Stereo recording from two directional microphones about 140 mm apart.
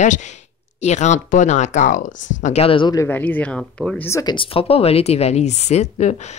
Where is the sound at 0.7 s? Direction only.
55° left (ahead or behind).